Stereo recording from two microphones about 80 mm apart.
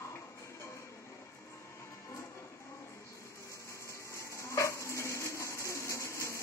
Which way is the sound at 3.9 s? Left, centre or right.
Left.